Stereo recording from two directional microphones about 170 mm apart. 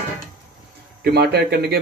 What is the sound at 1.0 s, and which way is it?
Speech, 75° right (ahead or behind).